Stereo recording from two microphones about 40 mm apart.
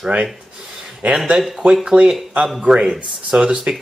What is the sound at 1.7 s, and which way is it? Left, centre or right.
Speech, centre.